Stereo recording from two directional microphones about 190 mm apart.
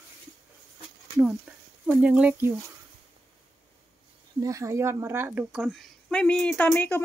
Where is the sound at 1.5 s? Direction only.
5° right (ahead or behind).